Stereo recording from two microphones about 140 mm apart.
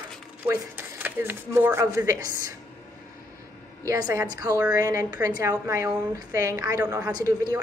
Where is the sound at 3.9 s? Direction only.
25° right (ahead or behind).